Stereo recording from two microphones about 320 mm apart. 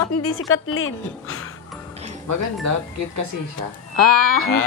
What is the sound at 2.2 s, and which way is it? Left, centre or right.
Speech, right.